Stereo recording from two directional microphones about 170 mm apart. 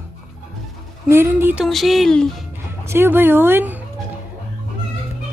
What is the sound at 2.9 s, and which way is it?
Speech, 15° right (ahead or behind).